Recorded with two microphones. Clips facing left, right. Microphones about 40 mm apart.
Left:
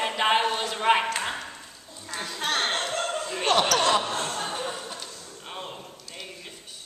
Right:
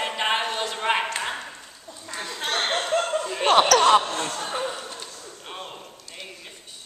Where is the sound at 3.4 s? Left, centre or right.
Right.